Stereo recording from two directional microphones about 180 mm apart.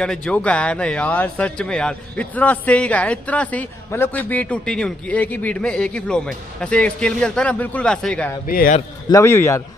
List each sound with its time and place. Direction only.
0.0 s speech: 5° left (ahead or behind)
8.5 s a man's voice: 55° left (ahead or behind)
9.1 s speech: 15° left (ahead or behind)